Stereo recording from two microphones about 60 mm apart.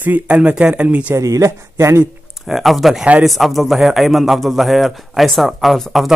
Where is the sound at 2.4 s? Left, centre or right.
Centre.